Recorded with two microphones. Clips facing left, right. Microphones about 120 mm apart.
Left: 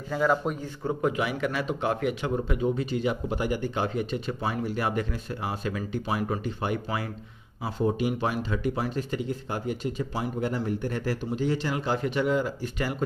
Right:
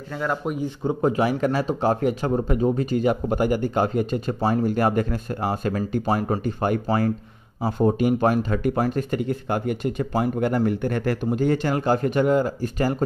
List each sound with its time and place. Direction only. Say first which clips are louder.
0.1 s speech: left 1 dB; centre (ahead or behind)
0.6 s speech: right 6 dB; 20° right (ahead or behind)
1.0 s speech: right 7 dB; 40° right (ahead or behind)